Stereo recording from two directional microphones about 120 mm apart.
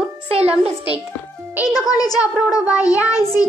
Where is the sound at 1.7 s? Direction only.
30° left (ahead or behind).